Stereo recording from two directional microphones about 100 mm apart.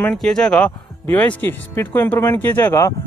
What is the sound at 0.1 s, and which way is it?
Speech, 5° left (ahead or behind).